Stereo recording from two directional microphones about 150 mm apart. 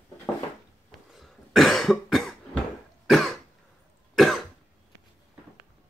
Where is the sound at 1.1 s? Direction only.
Centre (ahead or behind).